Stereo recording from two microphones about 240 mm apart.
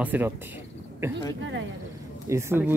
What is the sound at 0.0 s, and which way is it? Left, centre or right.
Speech, centre.